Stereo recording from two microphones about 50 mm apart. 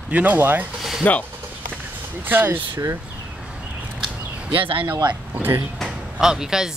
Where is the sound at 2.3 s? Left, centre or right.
Right.